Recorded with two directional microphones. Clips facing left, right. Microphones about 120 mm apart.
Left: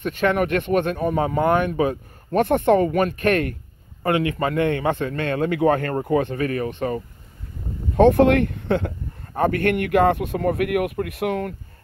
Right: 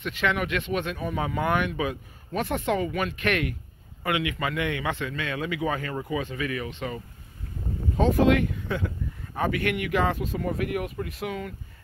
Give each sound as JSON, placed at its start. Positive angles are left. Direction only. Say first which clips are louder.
{"t": 0.0, "sound": "speech", "louder": "left 7 dB", "side_deg": 45}
{"t": 7.9, "sound": "speech", "louder": "left 7 dB", "side_deg": 60}
{"t": 9.3, "sound": "speech", "louder": "left 7 dB", "side_deg": 50}